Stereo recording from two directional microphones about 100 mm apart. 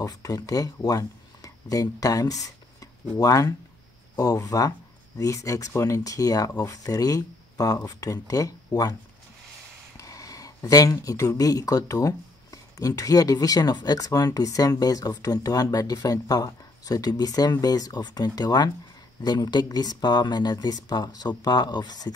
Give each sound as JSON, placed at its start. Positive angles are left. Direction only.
{"t": 0.0, "sound": "speech", "side_deg": 35}
{"t": 9.9, "sound": "speech", "side_deg": 35}